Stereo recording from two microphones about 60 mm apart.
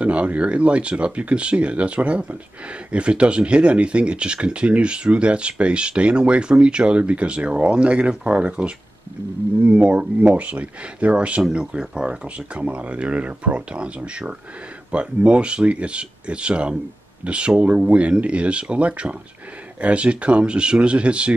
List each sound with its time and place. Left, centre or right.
0.0 s speech: right